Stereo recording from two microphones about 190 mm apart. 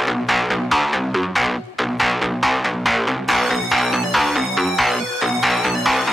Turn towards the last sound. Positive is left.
turn(degrees=0)  # may be behind; listen again after turning